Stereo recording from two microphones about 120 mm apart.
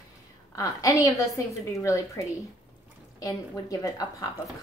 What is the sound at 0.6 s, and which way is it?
A woman's voice, 25° left (ahead or behind).